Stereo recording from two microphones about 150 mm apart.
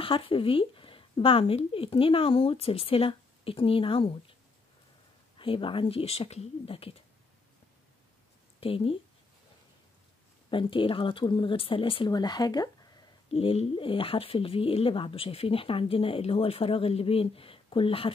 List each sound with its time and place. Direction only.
0.0 s speech: 35° left (ahead or behind)
5.4 s speech: 35° left (ahead or behind)
8.5 s speech: 40° left (ahead or behind)
10.5 s speech: 35° left (ahead or behind)
13.3 s speech: 40° left (ahead or behind)